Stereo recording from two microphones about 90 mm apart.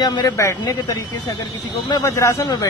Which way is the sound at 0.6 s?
40° left (ahead or behind).